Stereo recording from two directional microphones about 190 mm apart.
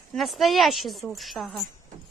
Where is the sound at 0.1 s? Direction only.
Centre (ahead or behind).